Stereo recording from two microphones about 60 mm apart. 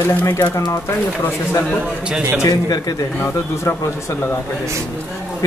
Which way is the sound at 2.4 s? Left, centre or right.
Left.